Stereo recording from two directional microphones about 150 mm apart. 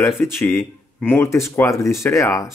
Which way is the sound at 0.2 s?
15° left (ahead or behind).